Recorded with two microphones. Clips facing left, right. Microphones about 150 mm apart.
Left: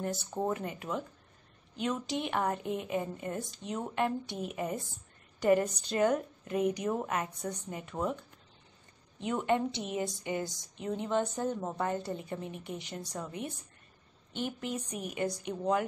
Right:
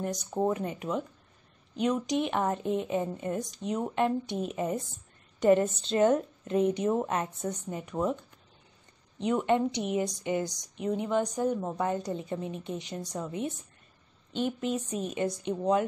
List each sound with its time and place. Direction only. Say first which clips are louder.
0.0 s a woman's voice: right 4 dB; 20° right (ahead or behind)
9.2 s a woman's voice: right 4 dB; 20° right (ahead or behind)